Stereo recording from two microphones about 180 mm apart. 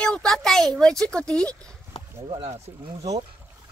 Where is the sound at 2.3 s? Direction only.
35° right (ahead or behind).